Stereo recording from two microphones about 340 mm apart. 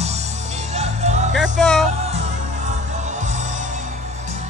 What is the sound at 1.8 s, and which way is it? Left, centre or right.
Music, centre.